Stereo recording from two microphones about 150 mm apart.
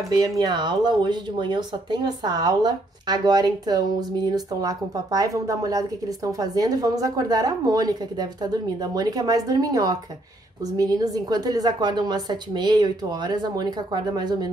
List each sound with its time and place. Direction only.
0.2 s speech: 25° right (ahead or behind)